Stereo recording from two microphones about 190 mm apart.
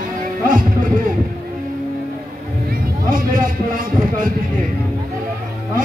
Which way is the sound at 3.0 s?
45° right (ahead or behind).